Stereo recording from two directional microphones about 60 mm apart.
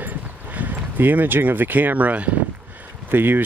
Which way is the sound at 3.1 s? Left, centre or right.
Right.